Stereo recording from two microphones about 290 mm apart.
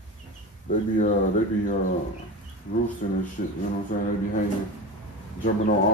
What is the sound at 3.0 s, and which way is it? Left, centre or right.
Speech, left.